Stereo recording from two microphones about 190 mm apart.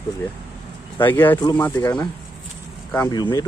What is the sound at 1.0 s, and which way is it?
Speech, 10° left (ahead or behind).